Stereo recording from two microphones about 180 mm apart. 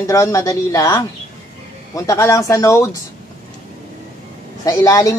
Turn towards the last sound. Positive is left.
turn(degrees=20)  # may be behind; listen again after turning